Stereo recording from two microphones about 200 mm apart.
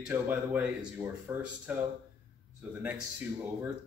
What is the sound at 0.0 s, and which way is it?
A man's voice, 5° right (ahead or behind).